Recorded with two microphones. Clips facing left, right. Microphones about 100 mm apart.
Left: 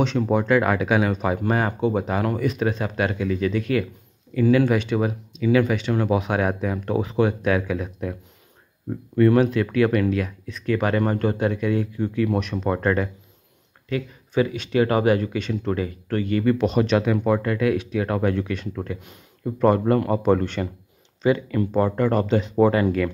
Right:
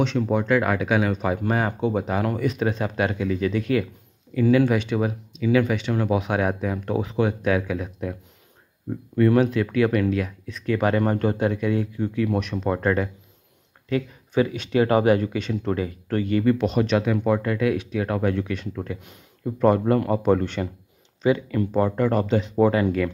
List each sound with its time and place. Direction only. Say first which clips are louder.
0.3 s speech: left 3 dB; 10° left (ahead or behind)
2.4 s speech: even; 20° right (ahead or behind)
4.7 s speech: left 1 dB; 5° right (ahead or behind)
10.6 s speech: even; 20° right (ahead or behind)
12.5 s speech: left 1 dB; centre (ahead or behind)
12.8 s speech: even; 10° right (ahead or behind)
13.8 s speech: right 2 dB; 30° right (ahead or behind)
16.5 s speech: left 1 dB; 5° left (ahead or behind)
19.9 s speech: left 1 dB; 5° right (ahead or behind)